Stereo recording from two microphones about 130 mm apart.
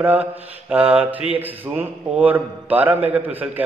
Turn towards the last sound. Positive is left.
turn(degrees=-15)  # may be behind; listen again after turning